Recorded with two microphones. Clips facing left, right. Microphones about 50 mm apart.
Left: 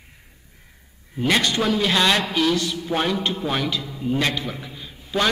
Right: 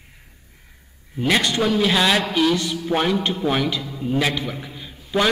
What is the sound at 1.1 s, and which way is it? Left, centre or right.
A man's voice, centre.